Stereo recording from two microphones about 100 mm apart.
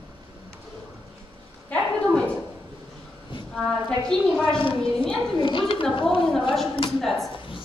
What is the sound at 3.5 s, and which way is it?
A woman's voice, 5° left (ahead or behind).